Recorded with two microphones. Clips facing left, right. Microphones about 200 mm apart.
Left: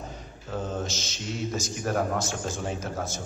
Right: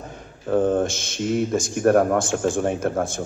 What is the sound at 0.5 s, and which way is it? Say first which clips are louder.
Speech: right 12 dB; 55° right (ahead or behind).